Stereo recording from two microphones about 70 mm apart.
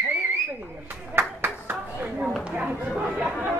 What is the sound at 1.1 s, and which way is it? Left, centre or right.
Clapping, right.